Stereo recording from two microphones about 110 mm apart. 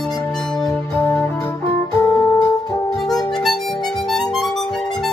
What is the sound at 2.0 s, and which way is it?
Music, 30° left (ahead or behind).